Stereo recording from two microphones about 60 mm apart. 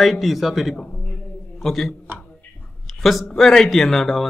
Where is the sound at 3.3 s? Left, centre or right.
Centre.